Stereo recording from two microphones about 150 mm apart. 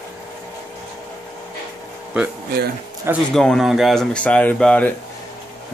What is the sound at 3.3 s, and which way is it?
Speech, 5° left (ahead or behind).